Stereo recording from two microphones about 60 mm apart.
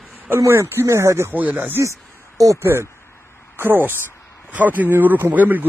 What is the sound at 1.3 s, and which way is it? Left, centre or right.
Speech, right.